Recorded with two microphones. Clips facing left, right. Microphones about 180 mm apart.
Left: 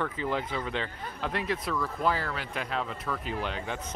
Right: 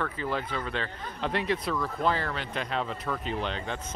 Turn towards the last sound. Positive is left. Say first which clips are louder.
# right 1 dB
turn(degrees=10)  # may be behind; listen again after turning